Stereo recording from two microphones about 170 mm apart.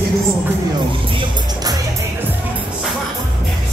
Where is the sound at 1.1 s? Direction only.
20° right (ahead or behind).